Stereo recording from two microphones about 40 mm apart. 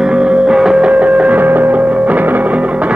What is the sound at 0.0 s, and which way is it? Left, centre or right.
Music, right.